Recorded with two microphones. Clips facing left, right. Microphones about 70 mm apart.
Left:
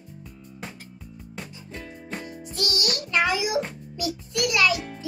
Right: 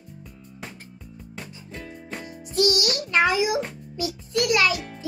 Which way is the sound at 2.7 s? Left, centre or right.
Right.